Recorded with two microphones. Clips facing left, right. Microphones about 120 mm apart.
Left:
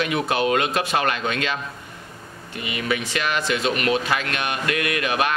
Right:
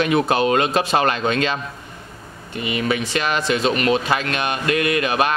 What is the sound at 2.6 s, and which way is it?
Speech, 30° right (ahead or behind).